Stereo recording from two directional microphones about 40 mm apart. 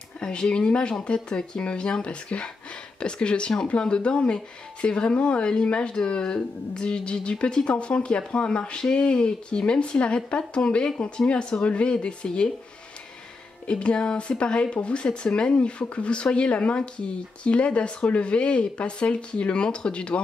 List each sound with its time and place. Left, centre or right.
0.2 s speech: left
13.7 s speech: left